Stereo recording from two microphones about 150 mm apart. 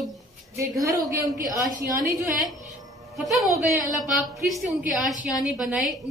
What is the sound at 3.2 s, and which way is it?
A woman's voice, centre (ahead or behind).